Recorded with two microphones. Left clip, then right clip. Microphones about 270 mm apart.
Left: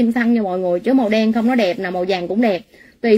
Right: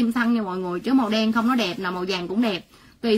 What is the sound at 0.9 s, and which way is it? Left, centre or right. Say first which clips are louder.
Speech: left 3 dB; right.